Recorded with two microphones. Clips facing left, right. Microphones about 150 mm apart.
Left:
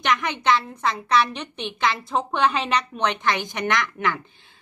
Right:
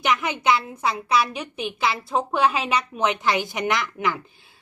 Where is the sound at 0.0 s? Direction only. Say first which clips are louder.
Right 1 dB; 10° right (ahead or behind).